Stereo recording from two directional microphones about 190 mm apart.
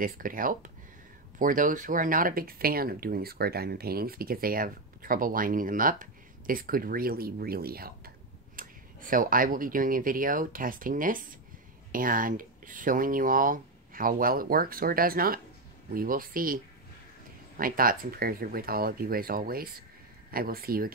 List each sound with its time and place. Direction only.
0.0 s speech: 45° right (ahead or behind)
17.6 s speech: 50° right (ahead or behind)